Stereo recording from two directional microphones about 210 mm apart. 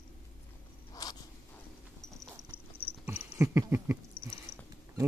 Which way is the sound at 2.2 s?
20° right (ahead or behind).